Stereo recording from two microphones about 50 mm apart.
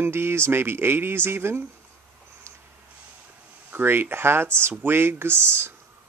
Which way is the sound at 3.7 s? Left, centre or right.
Right.